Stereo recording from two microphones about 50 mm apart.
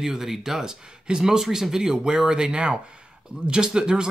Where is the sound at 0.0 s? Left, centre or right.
Centre.